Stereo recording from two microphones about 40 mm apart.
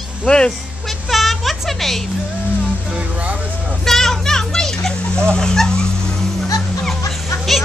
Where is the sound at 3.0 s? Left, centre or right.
Right.